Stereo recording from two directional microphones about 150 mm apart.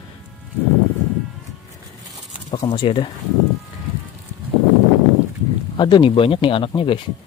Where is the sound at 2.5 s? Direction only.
35° left (ahead or behind).